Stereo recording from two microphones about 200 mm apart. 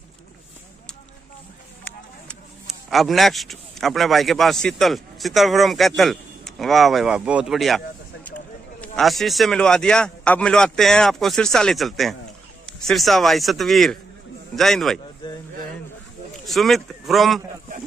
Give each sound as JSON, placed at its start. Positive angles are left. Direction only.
{"t": 2.9, "sound": "speech", "side_deg": 0}
{"t": 8.8, "sound": "speech", "side_deg": 0}
{"t": 15.2, "sound": "a sound", "side_deg": 25}
{"t": 16.4, "sound": "speech", "side_deg": 0}